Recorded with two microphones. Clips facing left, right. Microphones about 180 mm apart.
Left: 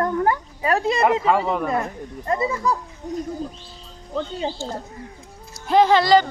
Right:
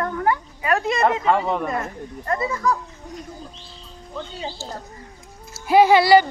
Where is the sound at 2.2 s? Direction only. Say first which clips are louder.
Left 1 dB; 20° left (ahead or behind).